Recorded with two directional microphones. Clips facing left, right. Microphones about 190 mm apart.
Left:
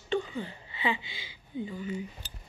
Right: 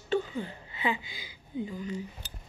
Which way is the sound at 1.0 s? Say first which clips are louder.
Even; 45° right (ahead or behind).